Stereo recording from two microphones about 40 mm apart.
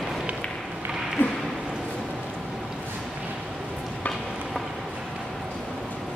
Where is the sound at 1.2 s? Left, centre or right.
Left.